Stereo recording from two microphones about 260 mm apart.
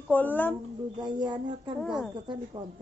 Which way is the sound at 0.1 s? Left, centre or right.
Centre.